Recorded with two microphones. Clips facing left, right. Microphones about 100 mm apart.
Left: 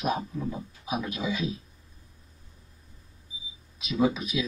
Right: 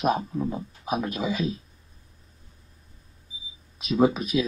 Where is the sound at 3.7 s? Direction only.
50° right (ahead or behind).